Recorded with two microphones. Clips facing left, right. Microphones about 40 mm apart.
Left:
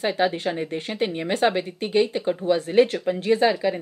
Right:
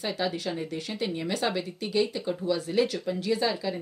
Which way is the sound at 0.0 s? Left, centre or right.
Left.